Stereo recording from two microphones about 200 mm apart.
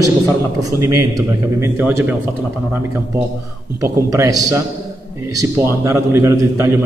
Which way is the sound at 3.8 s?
15° right (ahead or behind).